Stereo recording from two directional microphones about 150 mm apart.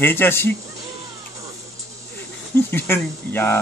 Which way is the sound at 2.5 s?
15° left (ahead or behind).